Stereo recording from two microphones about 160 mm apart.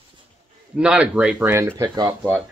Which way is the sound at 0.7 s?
5° right (ahead or behind).